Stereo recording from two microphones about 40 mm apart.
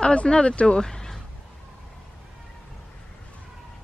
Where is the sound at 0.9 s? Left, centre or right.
Centre.